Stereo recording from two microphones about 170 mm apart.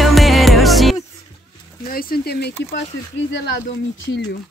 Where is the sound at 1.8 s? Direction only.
60° left (ahead or behind).